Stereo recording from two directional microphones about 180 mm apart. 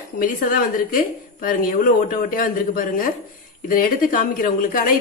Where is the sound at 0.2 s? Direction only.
50° left (ahead or behind).